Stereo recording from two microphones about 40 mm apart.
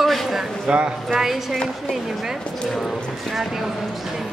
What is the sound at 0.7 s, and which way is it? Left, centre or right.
Speech, centre.